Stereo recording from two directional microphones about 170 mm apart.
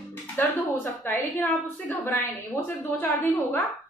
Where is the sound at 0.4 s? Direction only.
10° left (ahead or behind).